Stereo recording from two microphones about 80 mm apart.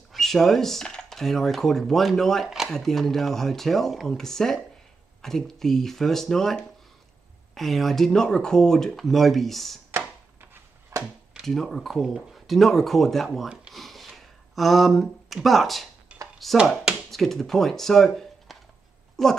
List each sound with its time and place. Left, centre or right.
0.1 s speech: centre
9.8 s chopping: right
10.9 s a sound: right
11.4 s speech: centre
13.7 s a sound: centre
16.5 s speech: centre
17.1 s speech: centre